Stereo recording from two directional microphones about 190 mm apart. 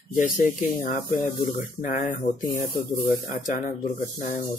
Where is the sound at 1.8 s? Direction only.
45° left (ahead or behind).